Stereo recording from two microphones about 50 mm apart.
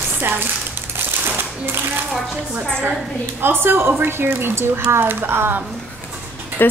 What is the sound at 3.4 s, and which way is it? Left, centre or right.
Speech, right.